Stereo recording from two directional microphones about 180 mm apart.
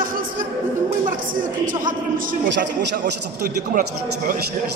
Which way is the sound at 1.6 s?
50° right (ahead or behind).